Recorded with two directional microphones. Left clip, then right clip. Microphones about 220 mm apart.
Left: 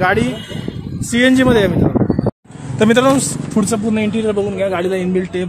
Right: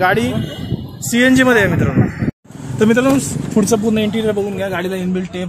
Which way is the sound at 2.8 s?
20° left (ahead or behind).